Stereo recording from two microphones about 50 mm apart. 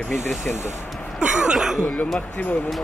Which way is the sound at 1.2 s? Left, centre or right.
Centre.